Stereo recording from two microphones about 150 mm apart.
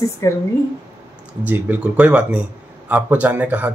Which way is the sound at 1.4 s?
10° right (ahead or behind).